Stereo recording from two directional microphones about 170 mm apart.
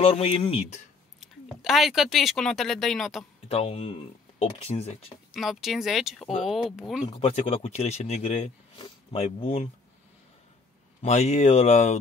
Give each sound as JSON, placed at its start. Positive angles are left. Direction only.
{"t": 0.0, "sound": "speech", "side_deg": 35}
{"t": 1.2, "sound": "speech", "side_deg": 0}
{"t": 3.4, "sound": "speech", "side_deg": 35}
{"t": 5.3, "sound": "speech", "side_deg": 0}
{"t": 7.1, "sound": "speech", "side_deg": 35}
{"t": 11.0, "sound": "speech", "side_deg": 40}